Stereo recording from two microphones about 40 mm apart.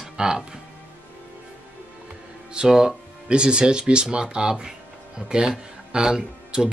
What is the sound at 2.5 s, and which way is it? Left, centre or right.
Speech, centre.